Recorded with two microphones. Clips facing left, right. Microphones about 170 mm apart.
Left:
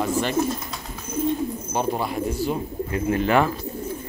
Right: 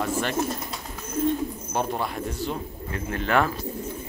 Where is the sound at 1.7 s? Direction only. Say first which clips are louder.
Left 3 dB; 5° left (ahead or behind).